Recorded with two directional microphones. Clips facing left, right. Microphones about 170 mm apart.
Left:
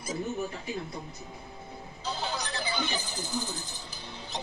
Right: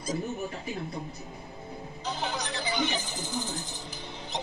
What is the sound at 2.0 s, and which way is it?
Speech, 20° right (ahead or behind).